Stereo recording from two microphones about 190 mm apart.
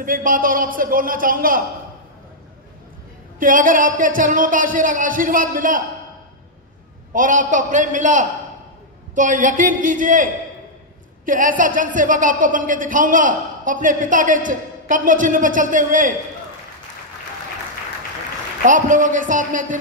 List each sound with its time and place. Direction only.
0.0 s a woman's voice: 45° right (ahead or behind)
3.3 s a woman's voice: 45° right (ahead or behind)
7.2 s a man's voice: 45° right (ahead or behind)
18.6 s a woman's voice: 45° right (ahead or behind)